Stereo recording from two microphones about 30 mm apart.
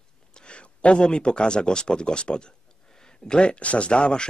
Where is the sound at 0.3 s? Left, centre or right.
Left.